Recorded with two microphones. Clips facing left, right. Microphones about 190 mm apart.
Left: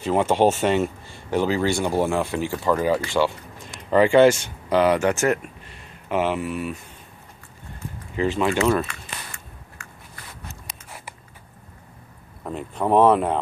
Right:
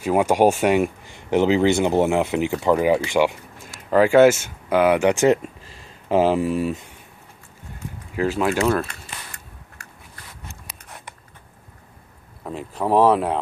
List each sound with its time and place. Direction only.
0.0 s speech: 10° right (ahead or behind)
3.6 s speech: 5° right (ahead or behind); by 5.5 s 20° right (ahead or behind)
6.0 s speech: 30° right (ahead or behind)
8.2 s speech: 5° right (ahead or behind)
12.4 s speech: centre (ahead or behind)